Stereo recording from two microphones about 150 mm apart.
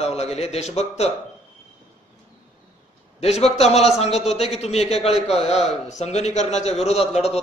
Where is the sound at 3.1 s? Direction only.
45° left (ahead or behind).